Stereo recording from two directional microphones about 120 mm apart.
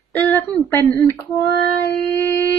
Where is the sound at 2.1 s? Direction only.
15° left (ahead or behind).